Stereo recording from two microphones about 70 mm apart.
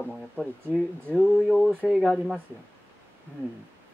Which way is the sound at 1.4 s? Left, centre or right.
Centre.